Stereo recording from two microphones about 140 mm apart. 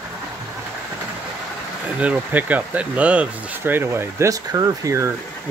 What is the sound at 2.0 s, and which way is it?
Speech, 10° right (ahead or behind).